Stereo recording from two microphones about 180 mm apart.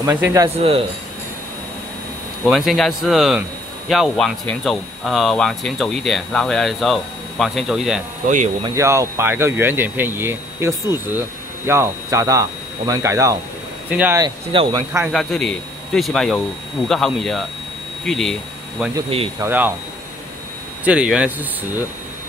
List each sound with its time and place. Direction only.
0.6 s speech: 30° right (ahead or behind)
2.4 s speech: centre (ahead or behind)
8.6 s speech: 15° right (ahead or behind)
14.2 s speech: 25° right (ahead or behind)
14.9 s speech: 5° right (ahead or behind)
19.0 s speech: 30° right (ahead or behind)
19.4 s speech: 10° right (ahead or behind)
20.8 s speech: 5° right (ahead or behind)